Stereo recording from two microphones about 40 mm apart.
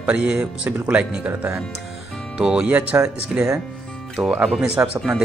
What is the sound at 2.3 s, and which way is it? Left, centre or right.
Speech, right.